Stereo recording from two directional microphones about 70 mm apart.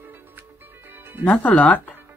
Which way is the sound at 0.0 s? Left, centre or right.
Right.